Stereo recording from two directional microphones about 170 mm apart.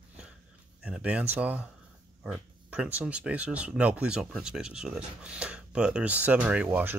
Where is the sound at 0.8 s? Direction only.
5° right (ahead or behind).